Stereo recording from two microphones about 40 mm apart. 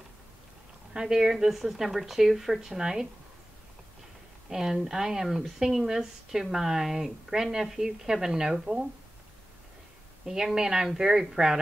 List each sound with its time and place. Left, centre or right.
0.9 s speech: centre
2.8 s speech: centre
4.5 s speech: centre
10.2 s speech: centre